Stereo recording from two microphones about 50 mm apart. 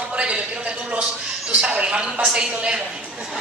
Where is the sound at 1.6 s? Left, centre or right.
Centre.